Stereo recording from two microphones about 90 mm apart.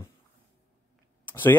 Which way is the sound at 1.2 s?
20° left (ahead or behind).